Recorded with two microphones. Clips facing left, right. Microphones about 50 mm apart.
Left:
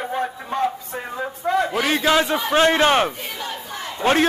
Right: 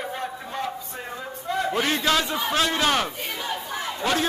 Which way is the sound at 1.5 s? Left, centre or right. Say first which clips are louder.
Left 7 dB; left.